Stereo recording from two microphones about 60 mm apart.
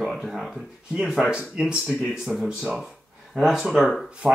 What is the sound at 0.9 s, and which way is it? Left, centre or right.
Speech, centre.